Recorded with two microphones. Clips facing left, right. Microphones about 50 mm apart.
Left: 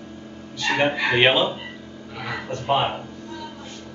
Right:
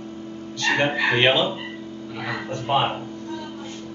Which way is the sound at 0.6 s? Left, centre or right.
Centre.